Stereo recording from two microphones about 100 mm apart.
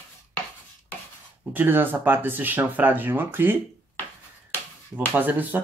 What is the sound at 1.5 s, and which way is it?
Speech, 20° right (ahead or behind).